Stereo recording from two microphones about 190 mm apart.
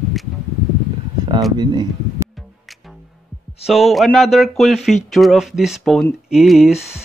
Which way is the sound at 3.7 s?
Centre (ahead or behind).